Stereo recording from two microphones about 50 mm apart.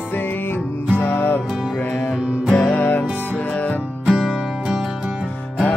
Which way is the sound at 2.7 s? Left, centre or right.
Left.